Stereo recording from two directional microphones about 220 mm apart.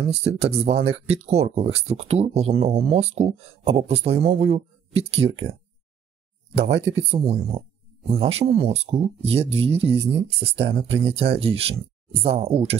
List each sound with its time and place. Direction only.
0.1 s speech: 25° right (ahead or behind)
6.7 s speech: 60° right (ahead or behind)
7.1 s speech: 25° right (ahead or behind)